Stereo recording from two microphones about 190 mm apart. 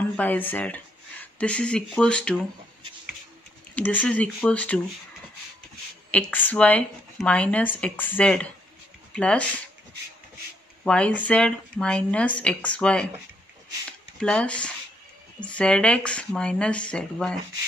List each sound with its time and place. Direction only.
0.1 s a woman's voice: 10° left (ahead or behind)
3.7 s a woman's voice: 10° left (ahead or behind)
6.1 s a woman's voice: 10° left (ahead or behind)
10.8 s a woman's voice: 5° left (ahead or behind)
14.2 s speech: 5° left (ahead or behind)